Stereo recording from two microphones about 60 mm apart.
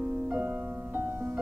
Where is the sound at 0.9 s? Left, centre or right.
Right.